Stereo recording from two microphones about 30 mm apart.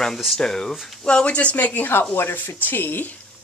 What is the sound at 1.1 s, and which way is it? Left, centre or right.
Speech, left.